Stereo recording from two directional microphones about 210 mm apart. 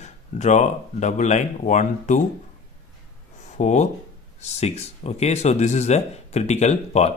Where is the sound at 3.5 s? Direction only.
35° left (ahead or behind).